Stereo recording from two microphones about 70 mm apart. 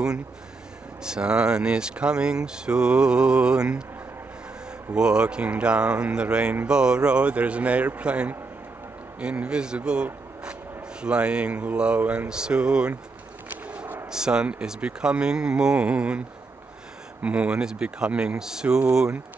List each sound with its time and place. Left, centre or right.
1.0 s speech: centre
4.9 s speech: centre
13.7 s a sound: centre
14.1 s speech: centre
17.2 s speech: centre